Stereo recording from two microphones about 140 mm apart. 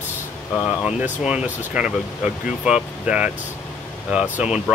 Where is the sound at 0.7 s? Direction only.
5° right (ahead or behind).